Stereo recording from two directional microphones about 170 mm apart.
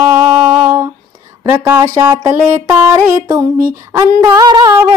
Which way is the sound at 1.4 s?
15° right (ahead or behind).